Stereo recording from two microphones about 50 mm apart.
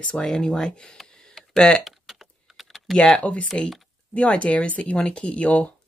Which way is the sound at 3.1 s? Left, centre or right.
Left.